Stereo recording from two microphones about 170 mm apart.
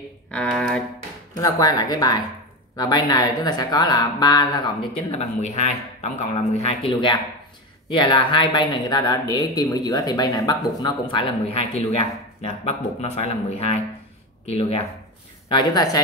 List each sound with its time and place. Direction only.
0.3 s a sound: 5° left (ahead or behind)
1.3 s speech: 20° left (ahead or behind)
15.4 s speech: 25° left (ahead or behind)